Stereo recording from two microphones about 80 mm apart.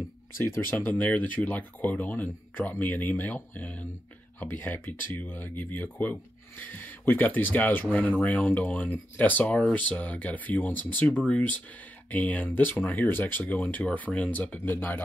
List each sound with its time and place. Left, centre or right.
0.4 s speech: left